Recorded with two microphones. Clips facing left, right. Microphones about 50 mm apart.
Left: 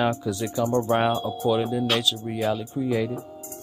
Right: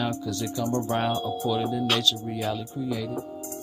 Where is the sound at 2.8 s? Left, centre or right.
Left.